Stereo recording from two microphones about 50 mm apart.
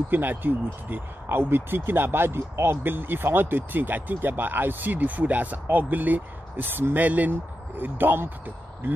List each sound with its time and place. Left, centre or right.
0.1 s speech: right